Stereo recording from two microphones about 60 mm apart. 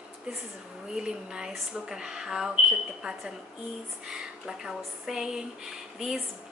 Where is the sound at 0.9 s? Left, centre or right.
Centre.